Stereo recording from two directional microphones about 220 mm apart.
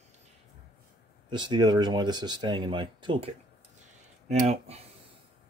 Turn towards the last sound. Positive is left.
turn(degrees=-30)  # may be behind; listen again after turning